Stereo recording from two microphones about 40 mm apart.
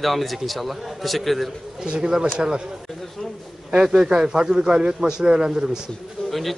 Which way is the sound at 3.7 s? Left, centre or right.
Centre.